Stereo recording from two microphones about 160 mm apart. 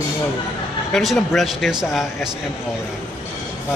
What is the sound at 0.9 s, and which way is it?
Speech, centre (ahead or behind).